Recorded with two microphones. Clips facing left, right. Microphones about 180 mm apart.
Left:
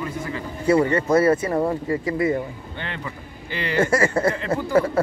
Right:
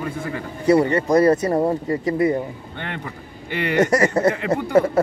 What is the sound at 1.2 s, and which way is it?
Speech, 40° right (ahead or behind).